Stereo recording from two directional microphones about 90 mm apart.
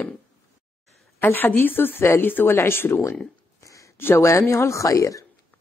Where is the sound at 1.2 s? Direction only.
20° left (ahead or behind).